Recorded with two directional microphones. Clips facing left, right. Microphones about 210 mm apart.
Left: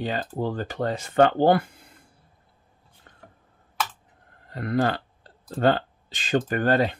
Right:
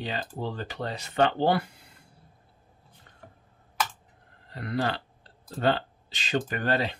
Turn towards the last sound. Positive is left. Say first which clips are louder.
# left 6 dB
turn(degrees=50)  # may be behind; listen again after turning